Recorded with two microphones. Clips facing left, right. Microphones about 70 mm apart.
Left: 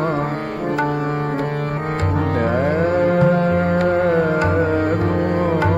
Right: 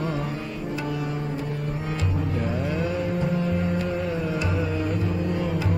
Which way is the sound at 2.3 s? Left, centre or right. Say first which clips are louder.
Left 10 dB; left.